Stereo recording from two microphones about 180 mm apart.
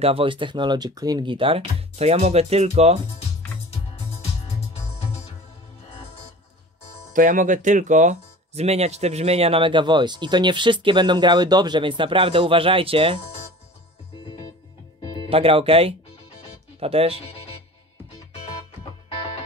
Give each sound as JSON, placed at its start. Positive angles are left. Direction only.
{"t": 0.0, "sound": "speech", "side_deg": -30}
{"t": 4.9, "sound": "music", "side_deg": 35}
{"t": 7.2, "sound": "speech", "side_deg": -45}
{"t": 15.1, "sound": "speech", "side_deg": -30}